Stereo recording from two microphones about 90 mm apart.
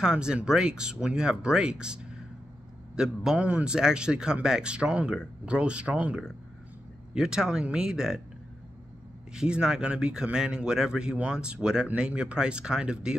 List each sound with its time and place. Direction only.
0.0 s a man's voice: 10° right (ahead or behind)
3.0 s a man's voice: 10° right (ahead or behind)
9.3 s a man's voice: 10° right (ahead or behind)